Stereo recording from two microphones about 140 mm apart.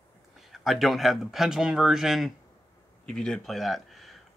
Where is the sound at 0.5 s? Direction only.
Centre (ahead or behind).